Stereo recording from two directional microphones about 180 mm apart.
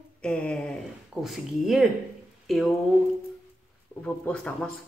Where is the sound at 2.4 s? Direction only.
Centre (ahead or behind).